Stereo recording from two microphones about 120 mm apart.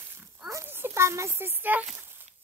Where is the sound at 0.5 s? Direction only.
20° right (ahead or behind).